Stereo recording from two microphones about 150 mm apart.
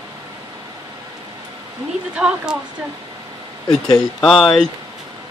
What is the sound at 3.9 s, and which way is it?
Speech, 5° left (ahead or behind).